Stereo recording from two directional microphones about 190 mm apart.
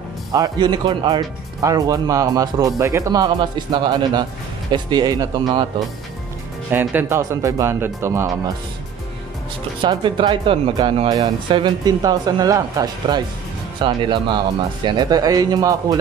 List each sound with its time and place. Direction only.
0.3 s speech: 20° right (ahead or behind)
6.7 s speech: 10° right (ahead or behind)
9.8 s speech: 25° right (ahead or behind)